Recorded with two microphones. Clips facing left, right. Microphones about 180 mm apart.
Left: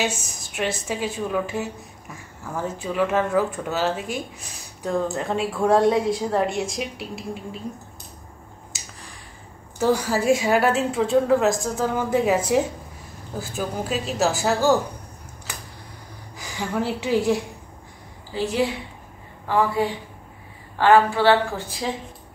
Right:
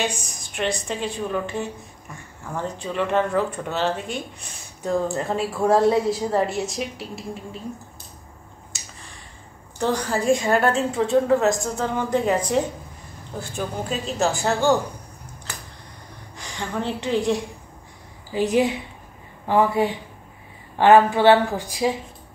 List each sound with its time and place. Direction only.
0.5 s a woman's voice: 5° left (ahead or behind)
8.7 s finger snapping: centre (ahead or behind)
9.8 s a woman's voice: 5° left (ahead or behind)
16.3 s a woman's voice: 5° left (ahead or behind)
18.3 s a woman's voice: 20° right (ahead or behind)